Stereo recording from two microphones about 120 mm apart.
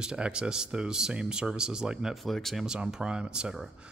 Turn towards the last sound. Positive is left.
turn(degrees=-5)  # may be behind; listen again after turning